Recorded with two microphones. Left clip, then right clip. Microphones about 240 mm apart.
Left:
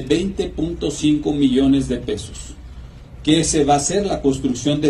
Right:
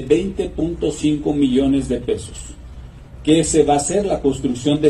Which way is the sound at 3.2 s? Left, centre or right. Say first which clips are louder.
Right 2 dB; left.